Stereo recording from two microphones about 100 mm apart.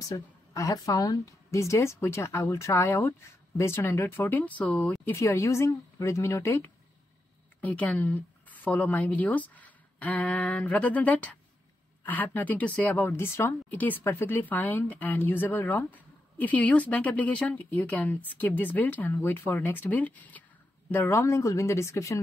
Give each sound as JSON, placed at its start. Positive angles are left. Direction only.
{"t": 0.1, "sound": "a woman's voice", "side_deg": 35}
{"t": 5.0, "sound": "a woman's voice", "side_deg": 25}
{"t": 7.6, "sound": "a woman's voice", "side_deg": 15}